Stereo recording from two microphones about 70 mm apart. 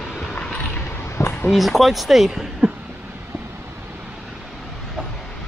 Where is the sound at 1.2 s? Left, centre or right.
Left.